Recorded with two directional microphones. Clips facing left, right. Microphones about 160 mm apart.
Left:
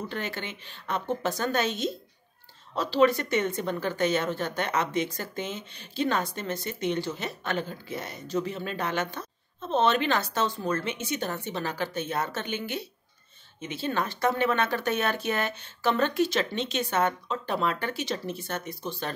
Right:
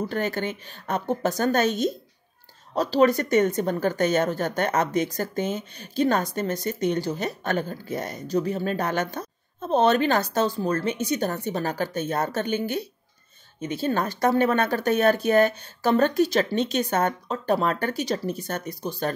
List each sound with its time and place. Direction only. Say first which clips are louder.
0.1 s a woman's voice: right 7 dB; 45° right (ahead or behind)